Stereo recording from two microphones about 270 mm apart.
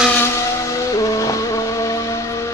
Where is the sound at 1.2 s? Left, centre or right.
Centre.